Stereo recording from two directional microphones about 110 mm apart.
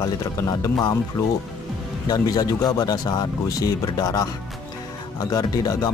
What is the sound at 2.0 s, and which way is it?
Speech, 35° left (ahead or behind).